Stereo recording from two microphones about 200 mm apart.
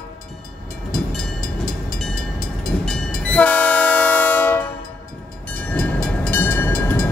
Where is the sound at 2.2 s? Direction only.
50° left (ahead or behind).